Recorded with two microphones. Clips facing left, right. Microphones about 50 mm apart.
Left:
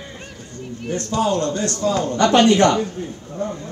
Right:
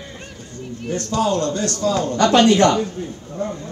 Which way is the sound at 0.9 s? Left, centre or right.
Left.